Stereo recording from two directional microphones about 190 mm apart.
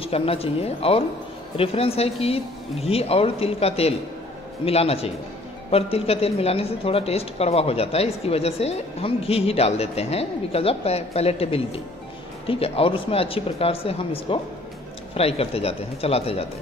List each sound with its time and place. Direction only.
0.0 s a woman's voice: 30° left (ahead or behind)